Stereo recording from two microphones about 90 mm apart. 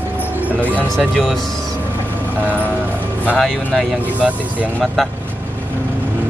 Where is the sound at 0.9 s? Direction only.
5° left (ahead or behind).